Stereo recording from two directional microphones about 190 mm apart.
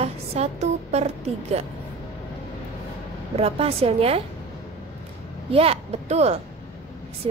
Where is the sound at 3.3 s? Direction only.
30° right (ahead or behind).